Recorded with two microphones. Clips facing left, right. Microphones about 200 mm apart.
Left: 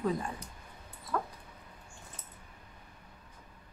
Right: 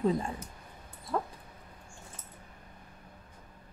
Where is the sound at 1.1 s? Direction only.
25° right (ahead or behind).